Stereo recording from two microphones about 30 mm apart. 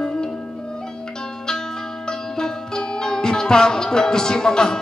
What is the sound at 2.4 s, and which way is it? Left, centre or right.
Music, left.